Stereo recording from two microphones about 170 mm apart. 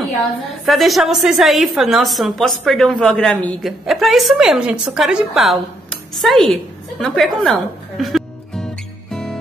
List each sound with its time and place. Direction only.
0.7 s a woman's voice: centre (ahead or behind)
9.1 s music: 5° left (ahead or behind)